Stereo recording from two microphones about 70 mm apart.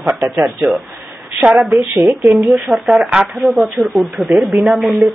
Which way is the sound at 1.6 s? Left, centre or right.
Centre.